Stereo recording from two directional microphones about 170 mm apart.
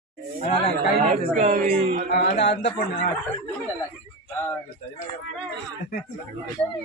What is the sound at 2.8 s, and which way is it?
Speech, 50° left (ahead or behind).